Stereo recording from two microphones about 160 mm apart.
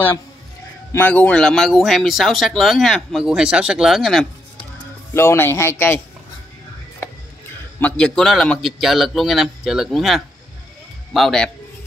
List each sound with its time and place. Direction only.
0.9 s speech: 10° left (ahead or behind)
5.1 s speech: 15° left (ahead or behind)
7.8 s speech: 5° left (ahead or behind)